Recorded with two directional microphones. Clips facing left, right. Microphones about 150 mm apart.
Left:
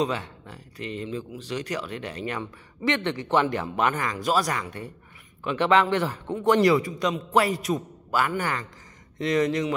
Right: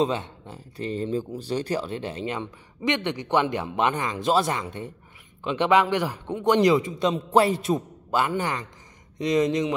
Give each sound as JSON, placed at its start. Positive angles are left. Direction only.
{"t": 0.0, "sound": "speech", "side_deg": -25}